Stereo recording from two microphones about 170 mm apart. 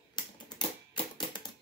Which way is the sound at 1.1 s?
25° left (ahead or behind).